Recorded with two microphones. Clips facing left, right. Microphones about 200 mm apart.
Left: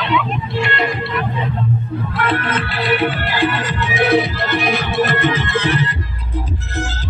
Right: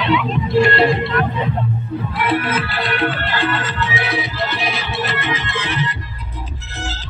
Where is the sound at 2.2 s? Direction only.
10° right (ahead or behind); by 3.9 s 15° left (ahead or behind).